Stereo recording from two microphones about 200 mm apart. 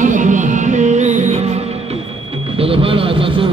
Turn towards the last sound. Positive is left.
turn(degrees=-25)  # may be behind; listen again after turning